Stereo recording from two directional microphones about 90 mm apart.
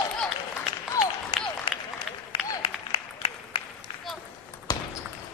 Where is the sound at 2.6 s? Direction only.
90° left.